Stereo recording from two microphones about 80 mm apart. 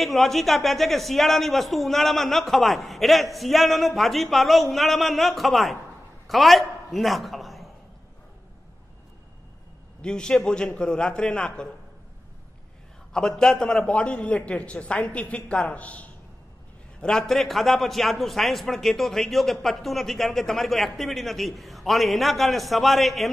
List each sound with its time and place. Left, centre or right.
0.0 s a man's voice: centre
10.0 s a man's voice: centre
13.1 s a man's voice: centre